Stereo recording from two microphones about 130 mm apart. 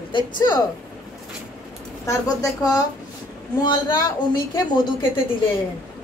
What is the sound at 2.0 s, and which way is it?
Speech, 25° left (ahead or behind).